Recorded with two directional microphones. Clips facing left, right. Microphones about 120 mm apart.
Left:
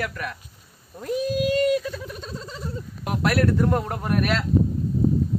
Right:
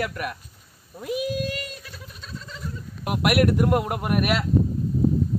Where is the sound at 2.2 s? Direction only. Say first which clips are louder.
Left 4 dB; 35° left (ahead or behind).